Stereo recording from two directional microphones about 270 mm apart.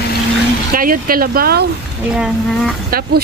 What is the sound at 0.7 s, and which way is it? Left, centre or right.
Speech, right.